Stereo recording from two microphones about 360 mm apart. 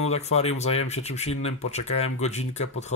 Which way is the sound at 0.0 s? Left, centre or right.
Centre.